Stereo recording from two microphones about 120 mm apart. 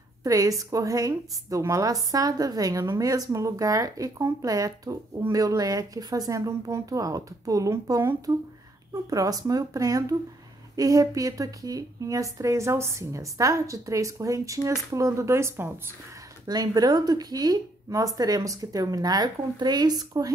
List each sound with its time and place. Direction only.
0.2 s a woman's voice: 30° right (ahead or behind)
16.4 s a woman's voice: 35° right (ahead or behind)